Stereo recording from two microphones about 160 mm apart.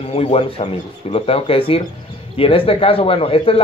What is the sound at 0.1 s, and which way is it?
Speech, 40° left (ahead or behind).